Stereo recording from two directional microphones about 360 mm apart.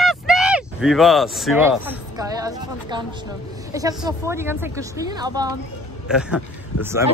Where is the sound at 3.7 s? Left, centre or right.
Centre.